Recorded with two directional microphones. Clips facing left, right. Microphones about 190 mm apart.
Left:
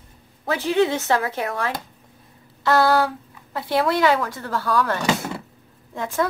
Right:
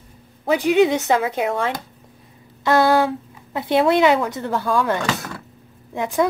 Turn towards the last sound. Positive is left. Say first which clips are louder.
# right 4 dB
turn(degrees=-15)  # may be behind; listen again after turning